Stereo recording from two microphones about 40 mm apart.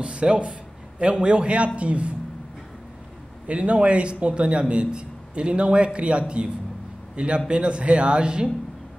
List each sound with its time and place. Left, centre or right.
0.0 s a sound: right
0.9 s a man's voice: right
3.4 s a man's voice: right